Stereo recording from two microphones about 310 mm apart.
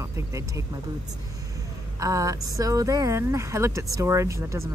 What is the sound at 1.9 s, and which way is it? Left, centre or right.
Speech, centre.